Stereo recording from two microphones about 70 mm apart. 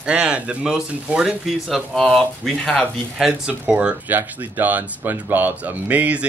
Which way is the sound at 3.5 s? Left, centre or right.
Centre.